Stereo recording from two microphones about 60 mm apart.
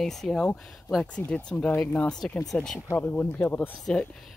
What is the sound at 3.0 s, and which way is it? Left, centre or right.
Speech, left.